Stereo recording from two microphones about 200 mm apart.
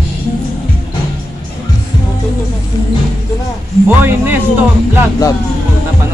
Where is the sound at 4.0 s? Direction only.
10° right (ahead or behind).